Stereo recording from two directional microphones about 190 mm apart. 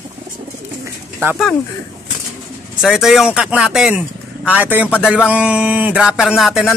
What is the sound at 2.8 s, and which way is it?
A man's voice, centre (ahead or behind).